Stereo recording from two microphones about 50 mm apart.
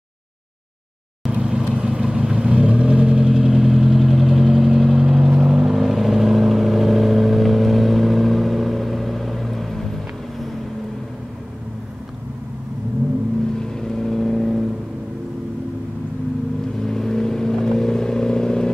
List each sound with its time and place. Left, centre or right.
1.4 s vehicle: centre
13.6 s vehicle: centre
16.8 s vehicle: centre